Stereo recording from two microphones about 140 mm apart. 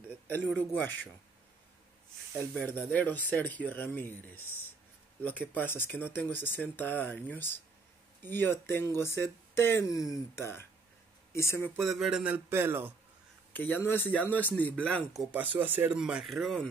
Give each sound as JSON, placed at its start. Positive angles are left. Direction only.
{"t": 0.3, "sound": "speech", "side_deg": 15}
{"t": 2.3, "sound": "speech", "side_deg": 15}
{"t": 11.7, "sound": "speech", "side_deg": 0}
{"t": 13.5, "sound": "speech", "side_deg": 10}
{"t": 15.3, "sound": "speech", "side_deg": -10}